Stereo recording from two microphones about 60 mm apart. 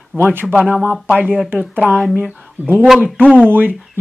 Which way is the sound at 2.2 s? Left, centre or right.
Centre.